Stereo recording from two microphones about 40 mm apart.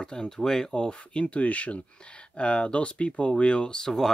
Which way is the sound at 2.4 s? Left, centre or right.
Left.